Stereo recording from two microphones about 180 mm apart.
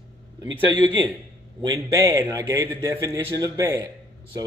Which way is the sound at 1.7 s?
20° right (ahead or behind).